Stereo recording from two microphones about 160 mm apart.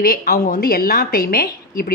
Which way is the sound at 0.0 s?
65° left (ahead or behind).